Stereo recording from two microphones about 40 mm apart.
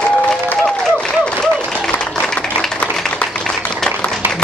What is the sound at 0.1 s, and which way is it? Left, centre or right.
Applause, left.